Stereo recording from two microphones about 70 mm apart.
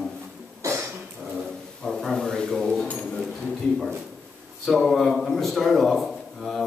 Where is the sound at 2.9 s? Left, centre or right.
Centre.